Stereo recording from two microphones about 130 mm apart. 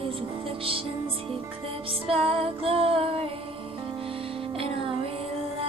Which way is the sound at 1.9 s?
45° right (ahead or behind).